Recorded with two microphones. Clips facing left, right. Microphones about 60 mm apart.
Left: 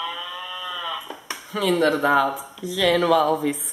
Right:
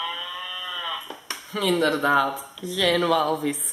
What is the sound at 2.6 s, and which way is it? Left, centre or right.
Speech, centre.